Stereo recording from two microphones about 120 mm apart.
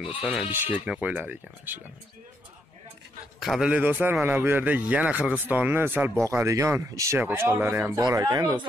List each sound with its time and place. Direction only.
0.3 s a man's voice: 15° right (ahead or behind)
3.3 s a man's voice: centre (ahead or behind)
3.7 s a man's voice: 15° right (ahead or behind)